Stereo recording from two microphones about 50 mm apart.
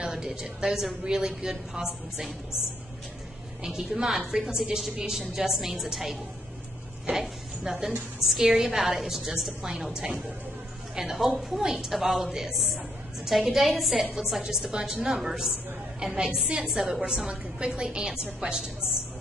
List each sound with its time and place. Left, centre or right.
0.0 s a woman's voice: centre
3.6 s a woman's voice: centre
17.6 s a woman's voice: centre